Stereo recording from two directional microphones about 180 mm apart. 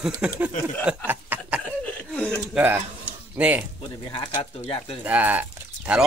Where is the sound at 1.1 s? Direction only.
10° right (ahead or behind).